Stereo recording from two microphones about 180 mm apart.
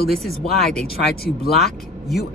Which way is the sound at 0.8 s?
60° left (ahead or behind).